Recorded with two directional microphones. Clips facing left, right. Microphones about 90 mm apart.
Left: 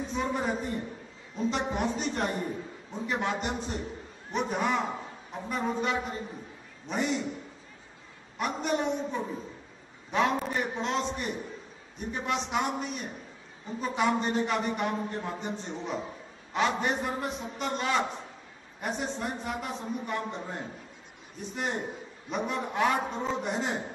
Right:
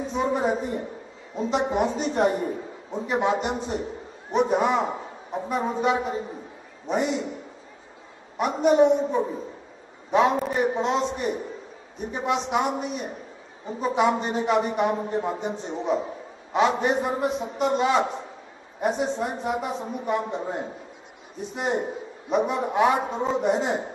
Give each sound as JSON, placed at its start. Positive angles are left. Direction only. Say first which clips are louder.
{"t": 0.1, "sound": "a woman's voice", "louder": "right 7 dB", "side_deg": -15}
{"t": 8.4, "sound": "a man's voice", "louder": "right 11 dB", "side_deg": -15}